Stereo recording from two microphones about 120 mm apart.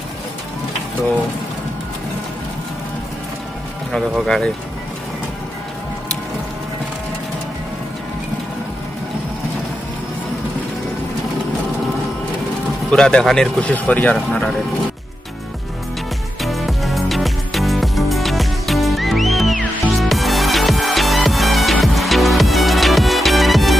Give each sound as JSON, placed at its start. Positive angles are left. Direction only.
{"t": 12.9, "sound": "speech", "side_deg": 5}
{"t": 16.3, "sound": "music", "side_deg": 0}